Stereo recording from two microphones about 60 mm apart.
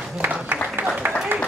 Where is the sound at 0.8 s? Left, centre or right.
Right.